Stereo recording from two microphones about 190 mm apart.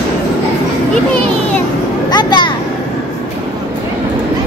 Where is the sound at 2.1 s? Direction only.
25° left (ahead or behind).